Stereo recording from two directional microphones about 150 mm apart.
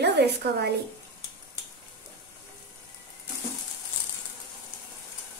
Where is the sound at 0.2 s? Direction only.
90° right.